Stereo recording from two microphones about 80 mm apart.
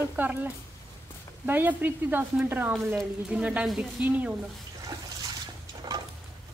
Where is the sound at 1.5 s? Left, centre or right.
Right.